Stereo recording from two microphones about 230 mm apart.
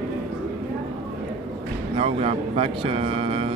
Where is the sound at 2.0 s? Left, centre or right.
Right.